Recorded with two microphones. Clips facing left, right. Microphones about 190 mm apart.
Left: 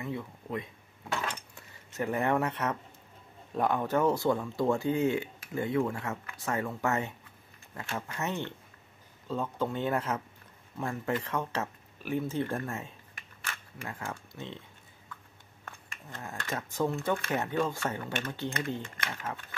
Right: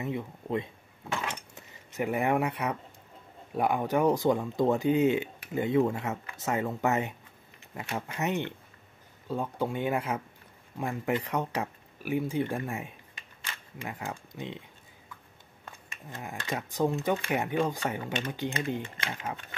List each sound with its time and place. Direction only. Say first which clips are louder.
0.0 s cutlery: right 3 dB; 20° right (ahead or behind)
3.5 s speech: right 1 dB; 10° right (ahead or behind)
15.6 s speech: right 1 dB; 15° right (ahead or behind)